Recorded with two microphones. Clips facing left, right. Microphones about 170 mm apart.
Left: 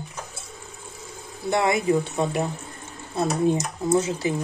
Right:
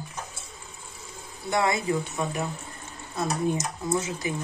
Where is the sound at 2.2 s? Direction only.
30° left (ahead or behind).